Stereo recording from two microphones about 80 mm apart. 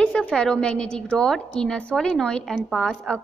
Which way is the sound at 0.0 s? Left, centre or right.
Centre.